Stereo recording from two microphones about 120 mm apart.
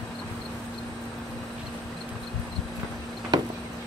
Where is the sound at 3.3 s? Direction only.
35° right (ahead or behind).